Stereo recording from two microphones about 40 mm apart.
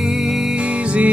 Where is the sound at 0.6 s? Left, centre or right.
Right.